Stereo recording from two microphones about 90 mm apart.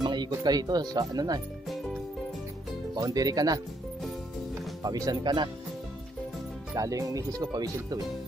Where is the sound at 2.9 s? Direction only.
45° right (ahead or behind).